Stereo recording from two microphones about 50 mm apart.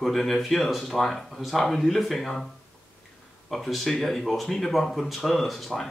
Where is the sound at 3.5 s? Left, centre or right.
Centre.